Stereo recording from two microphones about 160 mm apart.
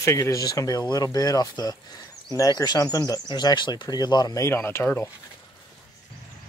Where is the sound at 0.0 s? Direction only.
20° left (ahead or behind).